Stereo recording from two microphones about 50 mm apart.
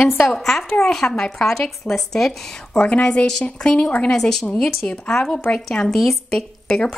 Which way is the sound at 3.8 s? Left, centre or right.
Left.